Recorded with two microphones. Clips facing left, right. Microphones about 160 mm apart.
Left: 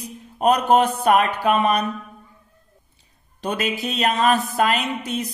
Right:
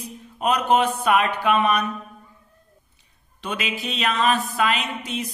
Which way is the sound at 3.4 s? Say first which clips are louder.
Left 4 dB; 45° left (ahead or behind).